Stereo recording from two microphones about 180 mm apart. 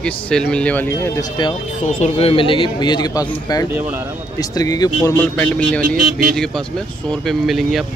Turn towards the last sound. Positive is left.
turn(degrees=0)  # may be behind; listen again after turning